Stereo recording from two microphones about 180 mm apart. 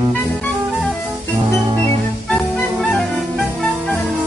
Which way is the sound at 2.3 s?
Centre (ahead or behind).